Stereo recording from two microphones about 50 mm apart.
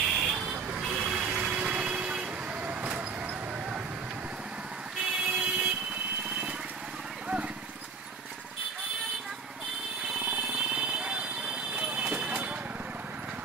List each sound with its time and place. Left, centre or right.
0.0 s vehicle: centre; by 3.0 s right
5.0 s vehicle: right
10.7 s alarm: centre
11.7 s a sound: right